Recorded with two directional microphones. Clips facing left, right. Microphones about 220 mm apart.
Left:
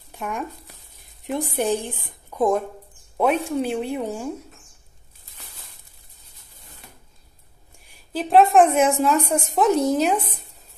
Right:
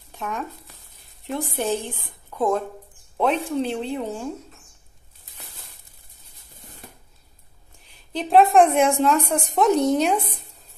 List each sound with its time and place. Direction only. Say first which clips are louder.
0.1 s speech: left 1 dB; 10° left (ahead or behind)
7.8 s a woman's voice: left 1 dB; 10° left (ahead or behind)